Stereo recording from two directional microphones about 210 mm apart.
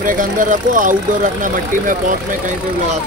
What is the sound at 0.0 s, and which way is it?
Speech, 40° right (ahead or behind).